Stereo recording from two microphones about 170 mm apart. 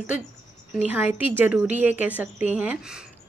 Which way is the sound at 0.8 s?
10° right (ahead or behind).